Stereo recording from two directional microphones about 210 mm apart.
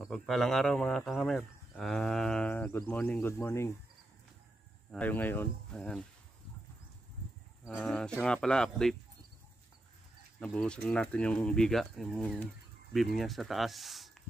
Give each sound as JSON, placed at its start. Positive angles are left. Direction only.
{"t": 0.0, "sound": "speech", "side_deg": 0}
{"t": 4.9, "sound": "speech", "side_deg": 10}
{"t": 7.6, "sound": "speech", "side_deg": 0}
{"t": 10.4, "sound": "speech", "side_deg": 5}